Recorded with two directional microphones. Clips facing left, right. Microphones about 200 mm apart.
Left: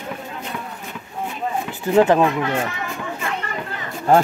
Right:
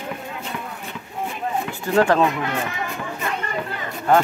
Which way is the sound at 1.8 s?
20° left (ahead or behind).